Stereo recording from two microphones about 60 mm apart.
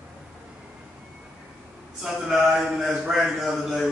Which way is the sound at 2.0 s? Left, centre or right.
Centre.